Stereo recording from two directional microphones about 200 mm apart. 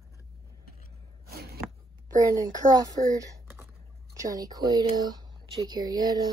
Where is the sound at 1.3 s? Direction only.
50° right (ahead or behind).